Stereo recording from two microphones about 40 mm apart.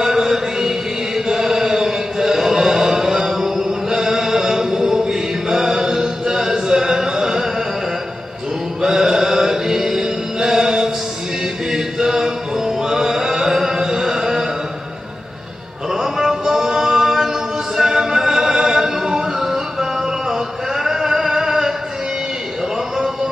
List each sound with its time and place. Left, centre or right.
0.0 s chant: centre
8.8 s chant: centre
11.7 s music: centre
15.9 s music: centre